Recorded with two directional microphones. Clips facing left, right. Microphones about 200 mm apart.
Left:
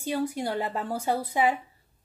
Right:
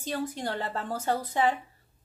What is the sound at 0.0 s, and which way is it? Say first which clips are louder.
A woman's voice: left 4 dB; 10° left (ahead or behind).